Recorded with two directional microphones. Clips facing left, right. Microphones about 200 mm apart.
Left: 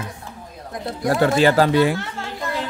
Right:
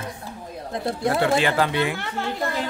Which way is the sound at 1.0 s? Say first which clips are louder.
Left 5 dB; 40° left (ahead or behind).